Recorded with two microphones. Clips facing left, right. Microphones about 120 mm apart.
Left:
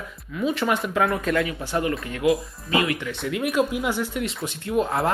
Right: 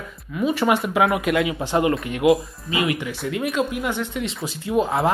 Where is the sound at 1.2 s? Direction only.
25° right (ahead or behind).